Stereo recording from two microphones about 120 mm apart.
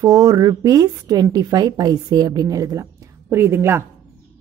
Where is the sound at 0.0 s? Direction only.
30° right (ahead or behind).